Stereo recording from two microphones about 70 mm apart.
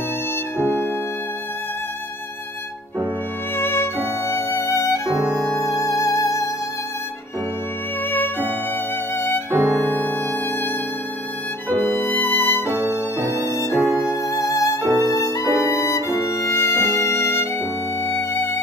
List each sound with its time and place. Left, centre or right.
0.6 s music: left
3.5 s music: left
8.1 s music: left
9.5 s music: right
9.8 s music: left
11.8 s music: left
12.8 s music: right
14.2 s music: left
14.8 s violin: right
15.7 s violin: left
18.0 s music: left